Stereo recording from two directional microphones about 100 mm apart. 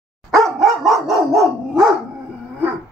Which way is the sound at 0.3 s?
Centre (ahead or behind).